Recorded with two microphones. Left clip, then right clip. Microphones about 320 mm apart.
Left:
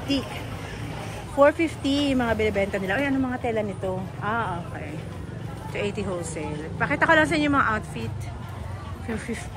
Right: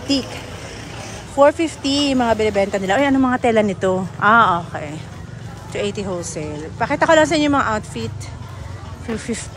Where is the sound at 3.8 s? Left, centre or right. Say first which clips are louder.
Right 13 dB; right.